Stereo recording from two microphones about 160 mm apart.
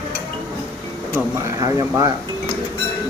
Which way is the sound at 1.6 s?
20° right (ahead or behind).